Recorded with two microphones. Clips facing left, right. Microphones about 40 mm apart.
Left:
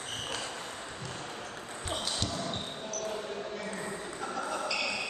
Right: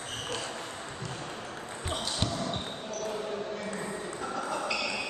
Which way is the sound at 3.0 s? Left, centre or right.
Centre.